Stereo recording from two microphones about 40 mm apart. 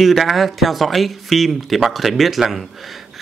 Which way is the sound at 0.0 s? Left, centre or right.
Centre.